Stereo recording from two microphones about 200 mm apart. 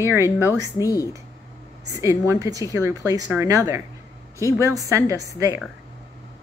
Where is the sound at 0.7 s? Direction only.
15° left (ahead or behind).